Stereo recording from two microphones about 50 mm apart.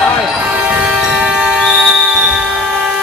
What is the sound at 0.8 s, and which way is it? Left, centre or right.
Music, centre.